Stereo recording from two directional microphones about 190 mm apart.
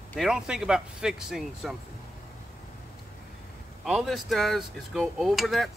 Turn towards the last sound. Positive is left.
turn(degrees=0)  # may be behind; listen again after turning